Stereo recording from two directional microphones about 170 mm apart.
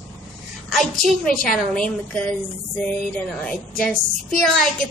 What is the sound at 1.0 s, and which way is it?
A woman's voice, 5° left (ahead or behind).